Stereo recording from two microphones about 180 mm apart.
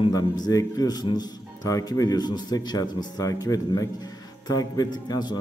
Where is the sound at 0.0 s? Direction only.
20° left (ahead or behind).